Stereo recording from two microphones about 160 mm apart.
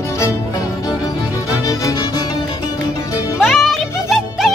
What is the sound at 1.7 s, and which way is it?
Music, 20° left (ahead or behind).